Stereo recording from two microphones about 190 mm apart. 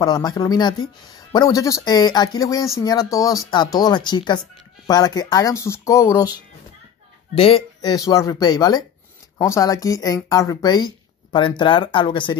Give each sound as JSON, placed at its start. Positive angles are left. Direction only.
{"t": 0.0, "sound": "speech", "side_deg": 20}
{"t": 7.3, "sound": "speech", "side_deg": 30}